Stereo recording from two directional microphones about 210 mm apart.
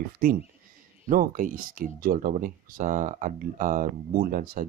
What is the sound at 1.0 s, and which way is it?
Speech, 40° right (ahead or behind).